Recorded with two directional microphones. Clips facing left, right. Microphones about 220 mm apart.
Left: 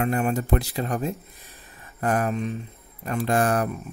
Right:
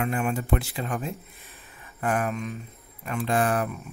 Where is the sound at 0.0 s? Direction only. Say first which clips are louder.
Left 3 dB; 40° left (ahead or behind).